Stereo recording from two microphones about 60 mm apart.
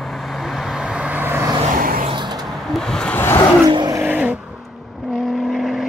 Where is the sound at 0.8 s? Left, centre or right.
Centre.